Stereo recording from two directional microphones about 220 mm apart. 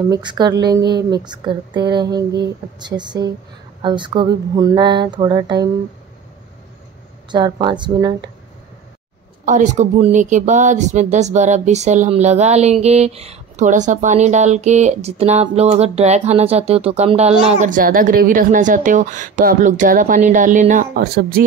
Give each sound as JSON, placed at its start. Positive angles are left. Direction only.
{"t": 0.1, "sound": "speech", "side_deg": -20}
{"t": 7.2, "sound": "speech", "side_deg": -20}
{"t": 9.4, "sound": "speech", "side_deg": -35}